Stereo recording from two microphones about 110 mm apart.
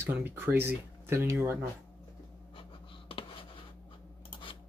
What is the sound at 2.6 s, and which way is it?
Writing, 50° left (ahead or behind).